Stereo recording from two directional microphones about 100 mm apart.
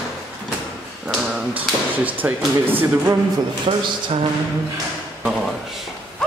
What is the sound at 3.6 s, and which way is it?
Speech, 60° right (ahead or behind).